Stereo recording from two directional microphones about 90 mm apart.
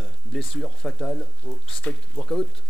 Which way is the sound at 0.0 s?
5° left (ahead or behind).